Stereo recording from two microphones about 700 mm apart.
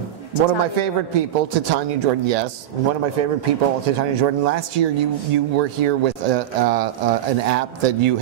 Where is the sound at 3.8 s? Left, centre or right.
Right.